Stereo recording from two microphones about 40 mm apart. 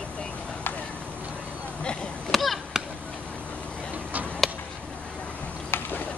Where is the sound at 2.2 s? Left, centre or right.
Centre.